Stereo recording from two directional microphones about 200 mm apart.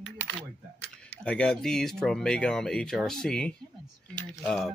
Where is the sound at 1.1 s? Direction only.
5° left (ahead or behind).